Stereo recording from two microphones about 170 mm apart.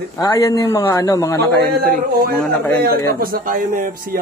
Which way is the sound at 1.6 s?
60° right (ahead or behind).